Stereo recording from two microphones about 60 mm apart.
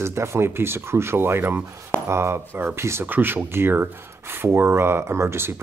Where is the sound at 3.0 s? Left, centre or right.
Right.